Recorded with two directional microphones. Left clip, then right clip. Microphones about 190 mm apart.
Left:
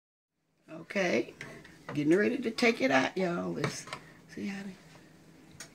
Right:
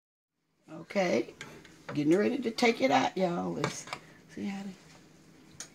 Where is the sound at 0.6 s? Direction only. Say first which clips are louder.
Right 1 dB; 30° right (ahead or behind).